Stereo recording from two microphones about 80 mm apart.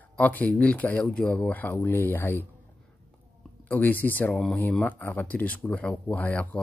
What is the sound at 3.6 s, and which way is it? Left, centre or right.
Speech, left.